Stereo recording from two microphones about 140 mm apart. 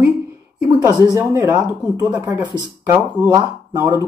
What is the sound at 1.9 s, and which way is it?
Speech, 25° right (ahead or behind).